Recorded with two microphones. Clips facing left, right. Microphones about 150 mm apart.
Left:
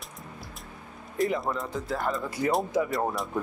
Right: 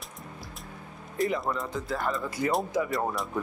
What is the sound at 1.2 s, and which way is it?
Speech, centre (ahead or behind).